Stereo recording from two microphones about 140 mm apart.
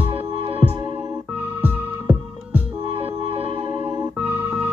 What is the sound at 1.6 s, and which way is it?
Music, 10° right (ahead or behind).